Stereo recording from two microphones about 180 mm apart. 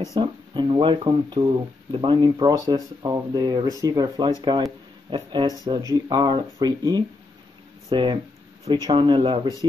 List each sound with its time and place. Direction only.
0.1 s speech: 25° right (ahead or behind)